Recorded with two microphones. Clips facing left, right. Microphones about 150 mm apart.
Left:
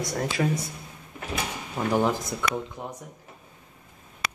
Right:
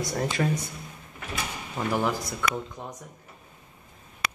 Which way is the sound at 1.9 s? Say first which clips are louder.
Left 3 dB; 20° left (ahead or behind).